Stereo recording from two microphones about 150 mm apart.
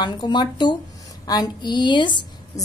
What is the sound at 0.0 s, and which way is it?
A woman's voice, 30° left (ahead or behind).